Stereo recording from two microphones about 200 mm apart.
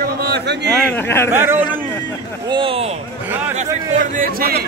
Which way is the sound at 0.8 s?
10° left (ahead or behind).